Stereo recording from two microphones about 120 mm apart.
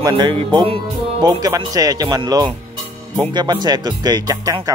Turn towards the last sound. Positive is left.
turn(degrees=-30)  # may be behind; listen again after turning